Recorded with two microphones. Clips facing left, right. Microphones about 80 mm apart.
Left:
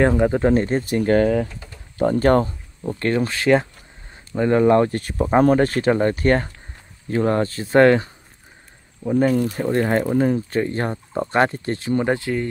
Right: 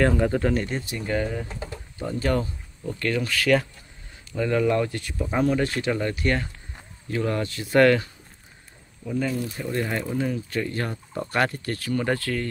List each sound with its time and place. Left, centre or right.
0.0 s speech: left
0.5 s speech: left
0.9 s speech: left
2.0 s speech: left
9.0 s speech: left; by 12.4 s centre